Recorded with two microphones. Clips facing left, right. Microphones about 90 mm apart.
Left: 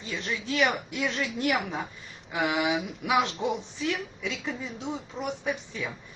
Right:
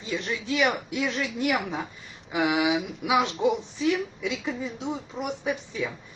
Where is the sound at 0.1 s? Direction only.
15° right (ahead or behind).